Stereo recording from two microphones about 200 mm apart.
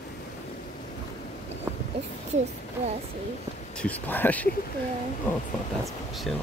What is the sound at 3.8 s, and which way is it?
Speech, 10° left (ahead or behind).